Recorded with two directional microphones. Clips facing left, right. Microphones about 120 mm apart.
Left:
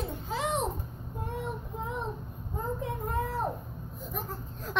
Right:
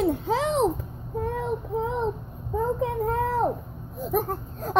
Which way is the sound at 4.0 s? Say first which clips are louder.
Right 13 dB; 60° right (ahead or behind).